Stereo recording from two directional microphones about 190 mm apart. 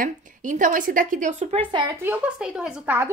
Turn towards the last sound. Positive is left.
turn(degrees=-10)  # may be behind; listen again after turning